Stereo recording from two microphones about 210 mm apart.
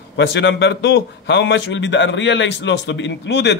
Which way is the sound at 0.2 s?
55° left (ahead or behind).